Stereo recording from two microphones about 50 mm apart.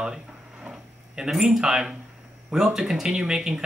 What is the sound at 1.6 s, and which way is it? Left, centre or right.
Speech, centre.